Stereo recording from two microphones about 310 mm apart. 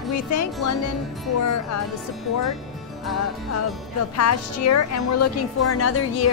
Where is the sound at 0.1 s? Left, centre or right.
Left.